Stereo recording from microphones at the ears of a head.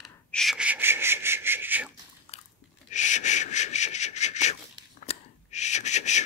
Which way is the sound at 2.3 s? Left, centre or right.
Left.